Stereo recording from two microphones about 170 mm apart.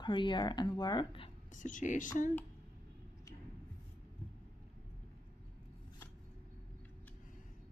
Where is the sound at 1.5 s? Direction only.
50° left (ahead or behind).